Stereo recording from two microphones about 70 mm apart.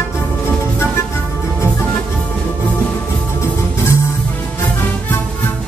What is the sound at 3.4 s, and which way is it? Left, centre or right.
Music, left.